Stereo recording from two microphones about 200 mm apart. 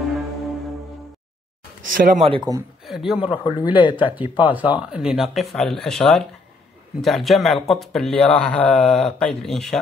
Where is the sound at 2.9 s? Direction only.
Centre (ahead or behind).